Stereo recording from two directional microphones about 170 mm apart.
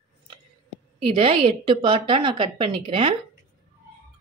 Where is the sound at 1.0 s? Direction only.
30° right (ahead or behind).